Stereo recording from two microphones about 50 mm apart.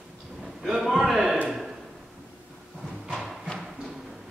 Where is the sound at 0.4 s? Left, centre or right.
Centre.